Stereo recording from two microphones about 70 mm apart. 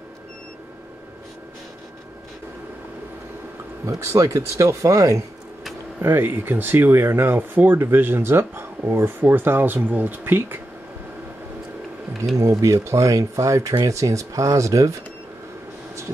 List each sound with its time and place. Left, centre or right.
3.8 s speech: right
5.9 s speech: right
12.4 s speech: right